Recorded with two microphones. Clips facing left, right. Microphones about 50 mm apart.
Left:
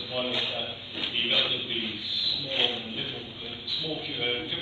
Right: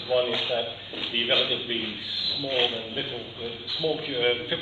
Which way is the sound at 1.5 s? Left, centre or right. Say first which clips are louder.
Right 2 dB; right.